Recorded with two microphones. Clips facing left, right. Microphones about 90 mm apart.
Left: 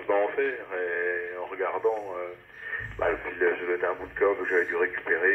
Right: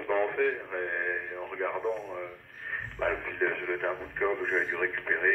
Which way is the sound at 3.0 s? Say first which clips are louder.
Left 4 dB; 25° left (ahead or behind).